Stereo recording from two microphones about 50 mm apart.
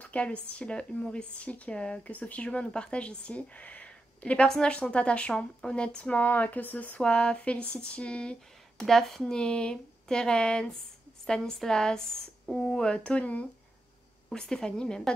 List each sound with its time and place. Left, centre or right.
0.0 s speech: left
6.2 s speech: left
7.0 s speech: left
8.8 s speech: centre; by 13.5 s left
14.3 s speech: centre